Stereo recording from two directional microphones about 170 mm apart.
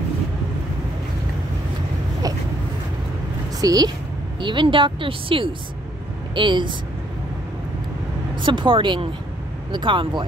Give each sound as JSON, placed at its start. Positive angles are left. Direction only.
{"t": 3.6, "sound": "a woman's voice", "side_deg": -25}
{"t": 8.4, "sound": "speech", "side_deg": -30}